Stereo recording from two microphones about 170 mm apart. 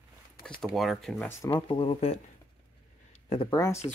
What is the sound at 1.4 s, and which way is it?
Speech, 30° left (ahead or behind).